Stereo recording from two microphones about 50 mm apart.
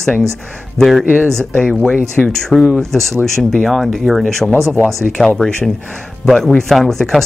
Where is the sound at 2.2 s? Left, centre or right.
Centre.